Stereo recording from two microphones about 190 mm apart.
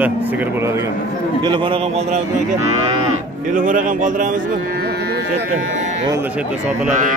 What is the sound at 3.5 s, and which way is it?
Speech, 45° right (ahead or behind).